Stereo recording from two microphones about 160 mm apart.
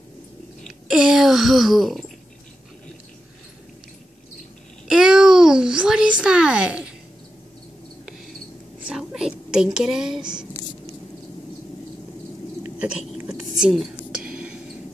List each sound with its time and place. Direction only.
0.8 s a child's voice: centre (ahead or behind)
4.8 s a child's voice: 5° right (ahead or behind)
8.8 s whispering: 5° right (ahead or behind)
9.8 s a child's voice: 5° right (ahead or behind)
12.8 s a child's voice: 5° right (ahead or behind)
14.1 s whispering: 5° right (ahead or behind)